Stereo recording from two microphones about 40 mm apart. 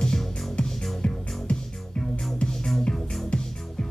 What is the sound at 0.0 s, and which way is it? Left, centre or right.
Music, left.